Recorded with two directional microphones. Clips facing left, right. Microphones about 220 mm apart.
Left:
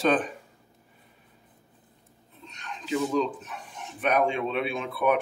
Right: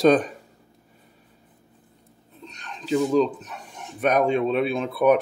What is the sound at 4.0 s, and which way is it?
Speech, 40° right (ahead or behind).